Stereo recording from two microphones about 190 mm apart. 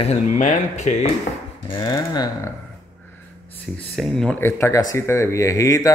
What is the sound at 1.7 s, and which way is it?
Speech, 25° left (ahead or behind).